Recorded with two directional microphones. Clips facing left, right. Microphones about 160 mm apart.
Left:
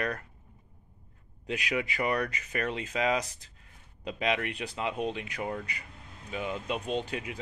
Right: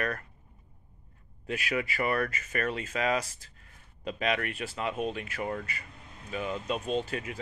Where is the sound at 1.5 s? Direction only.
20° left (ahead or behind).